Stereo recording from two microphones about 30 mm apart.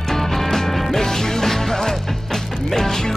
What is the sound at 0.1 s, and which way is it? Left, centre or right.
Music, centre.